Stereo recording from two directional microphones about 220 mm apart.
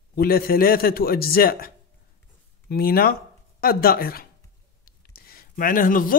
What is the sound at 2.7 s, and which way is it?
A man's voice, 45° left (ahead or behind).